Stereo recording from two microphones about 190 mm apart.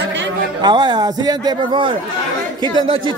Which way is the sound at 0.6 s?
25° right (ahead or behind).